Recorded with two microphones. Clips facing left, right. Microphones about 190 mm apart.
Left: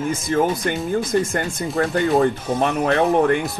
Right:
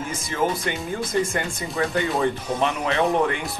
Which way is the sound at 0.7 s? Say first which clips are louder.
Left 6 dB; 45° left (ahead or behind).